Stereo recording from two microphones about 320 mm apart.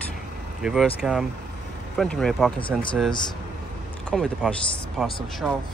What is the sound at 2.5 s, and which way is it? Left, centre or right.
Speech, centre.